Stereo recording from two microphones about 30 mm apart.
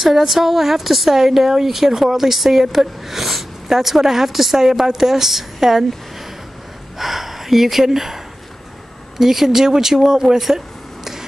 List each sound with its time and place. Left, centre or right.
0.0 s a woman's voice: centre
7.0 s speech: centre
9.2 s a woman's voice: centre